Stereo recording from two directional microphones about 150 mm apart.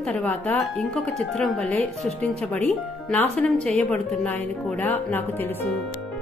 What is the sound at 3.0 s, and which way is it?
A woman's voice, 5° left (ahead or behind).